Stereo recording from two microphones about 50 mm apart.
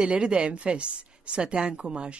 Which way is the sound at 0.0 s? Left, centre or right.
Centre.